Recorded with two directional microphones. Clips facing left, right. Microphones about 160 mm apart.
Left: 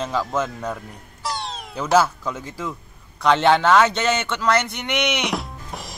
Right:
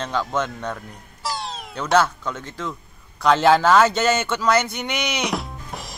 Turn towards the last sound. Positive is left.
turn(degrees=0)  # may be behind; listen again after turning